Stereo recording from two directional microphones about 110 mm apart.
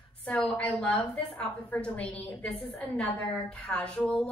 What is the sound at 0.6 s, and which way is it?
A woman's voice, 10° left (ahead or behind).